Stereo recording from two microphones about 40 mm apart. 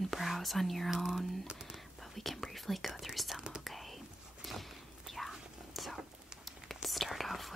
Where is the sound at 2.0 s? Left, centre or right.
Centre.